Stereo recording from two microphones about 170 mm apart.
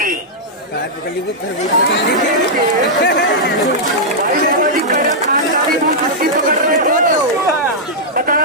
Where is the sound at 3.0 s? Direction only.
65° left (ahead or behind).